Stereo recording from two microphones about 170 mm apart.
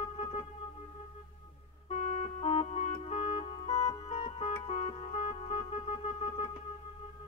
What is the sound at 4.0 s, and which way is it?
Music, 40° left (ahead or behind).